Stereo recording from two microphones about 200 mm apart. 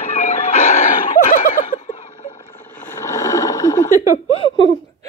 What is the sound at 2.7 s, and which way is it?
Vehicle, 15° left (ahead or behind).